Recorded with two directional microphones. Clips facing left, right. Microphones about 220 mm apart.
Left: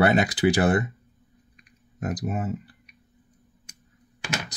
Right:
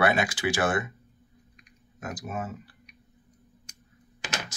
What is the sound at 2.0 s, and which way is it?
Speech, 35° left (ahead or behind).